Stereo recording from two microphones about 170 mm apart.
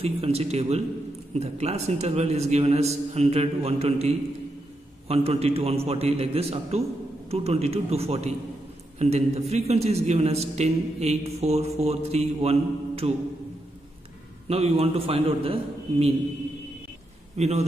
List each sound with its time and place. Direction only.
0.0 s a man's voice: 35° right (ahead or behind)
14.5 s a man's voice: 35° right (ahead or behind)
17.4 s a man's voice: 40° right (ahead or behind)